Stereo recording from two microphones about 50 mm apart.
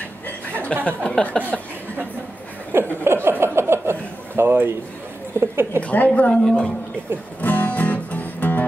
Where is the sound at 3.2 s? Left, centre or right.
Right.